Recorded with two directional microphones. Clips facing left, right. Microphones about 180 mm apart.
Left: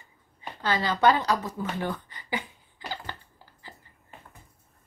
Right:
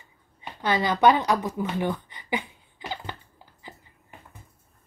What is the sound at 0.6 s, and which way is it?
A woman's voice, 20° right (ahead or behind).